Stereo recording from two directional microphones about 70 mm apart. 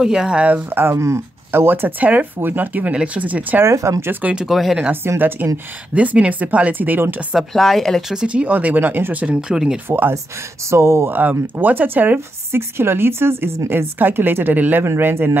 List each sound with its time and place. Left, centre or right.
0.0 s speech: centre; by 0.9 s right
0.9 s speech: right
3.6 s speech: right
4.0 s speech: right
4.5 s speech: centre
5.0 s speech: right
5.9 s speech: centre
7.3 s speech: centre
8.1 s speech: centre
9.8 s speech: right
11.1 s speech: right